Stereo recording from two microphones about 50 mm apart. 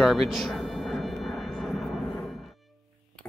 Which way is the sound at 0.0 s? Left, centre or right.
Centre.